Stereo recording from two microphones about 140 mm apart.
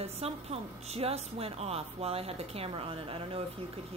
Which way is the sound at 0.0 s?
45° right (ahead or behind).